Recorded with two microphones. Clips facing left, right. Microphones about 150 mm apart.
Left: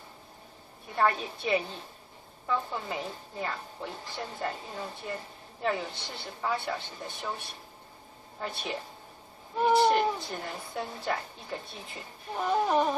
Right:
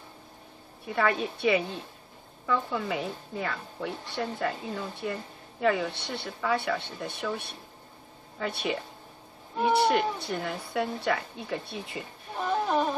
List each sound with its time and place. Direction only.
0.8 s speech: 70° right (ahead or behind)
9.8 s speech: 70° right (ahead or behind)
12.4 s a sound: 5° left (ahead or behind)